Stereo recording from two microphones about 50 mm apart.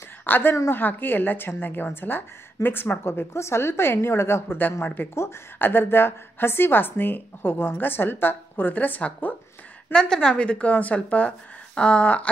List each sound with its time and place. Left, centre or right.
0.2 s a woman's voice: left
3.3 s a woman's voice: left
9.9 s speech: centre